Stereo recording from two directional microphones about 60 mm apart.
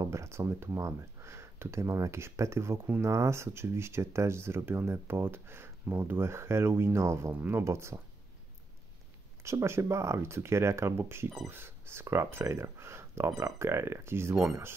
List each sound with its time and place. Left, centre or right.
0.0 s speech: right
0.7 s speech: right
7.3 s speech: right
7.6 s speech: right
9.4 s speech: right